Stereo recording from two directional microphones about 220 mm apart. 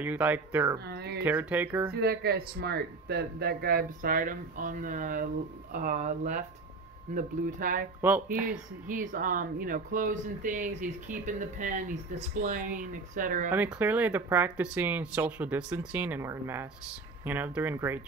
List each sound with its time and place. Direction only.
0.0 s speech: 5° right (ahead or behind)
0.8 s a sound: 45° right (ahead or behind)
1.2 s speech: 5° right (ahead or behind)
1.9 s speech: 45° right (ahead or behind)
8.0 s speech: 10° right (ahead or behind)
8.8 s speech: 35° right (ahead or behind)
13.5 s speech: 5° right (ahead or behind)